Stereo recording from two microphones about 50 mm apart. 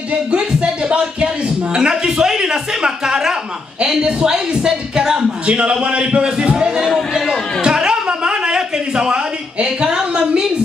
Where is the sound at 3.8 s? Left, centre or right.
Centre.